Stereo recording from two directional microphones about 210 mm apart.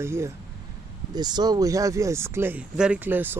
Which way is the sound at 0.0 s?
10° right (ahead or behind).